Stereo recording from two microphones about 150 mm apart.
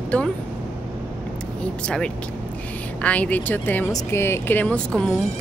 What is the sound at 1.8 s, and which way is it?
Speech, 5° left (ahead or behind).